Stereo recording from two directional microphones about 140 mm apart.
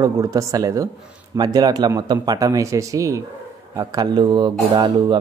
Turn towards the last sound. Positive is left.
turn(degrees=-35)  # may be behind; listen again after turning